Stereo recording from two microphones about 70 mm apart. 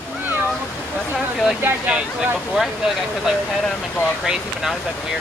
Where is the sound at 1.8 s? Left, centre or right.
Centre.